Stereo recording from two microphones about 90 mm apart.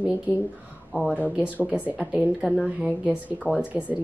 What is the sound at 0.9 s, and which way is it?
A woman's voice, 20° right (ahead or behind).